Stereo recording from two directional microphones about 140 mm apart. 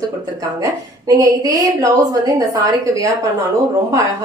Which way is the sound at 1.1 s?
25° right (ahead or behind).